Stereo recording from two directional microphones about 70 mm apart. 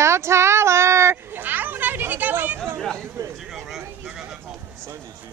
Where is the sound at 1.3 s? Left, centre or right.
Right.